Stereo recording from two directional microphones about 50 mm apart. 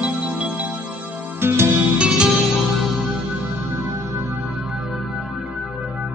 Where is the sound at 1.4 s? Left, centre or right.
Right.